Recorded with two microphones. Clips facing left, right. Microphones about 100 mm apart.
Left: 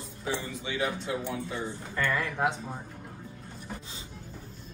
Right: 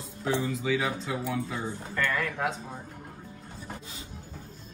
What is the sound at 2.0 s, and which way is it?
Speech, 20° left (ahead or behind).